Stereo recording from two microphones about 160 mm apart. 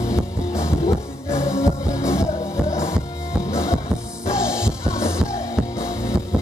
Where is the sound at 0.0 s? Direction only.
20° left (ahead or behind).